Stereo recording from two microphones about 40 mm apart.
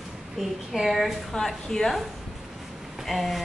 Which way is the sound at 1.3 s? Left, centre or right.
Centre.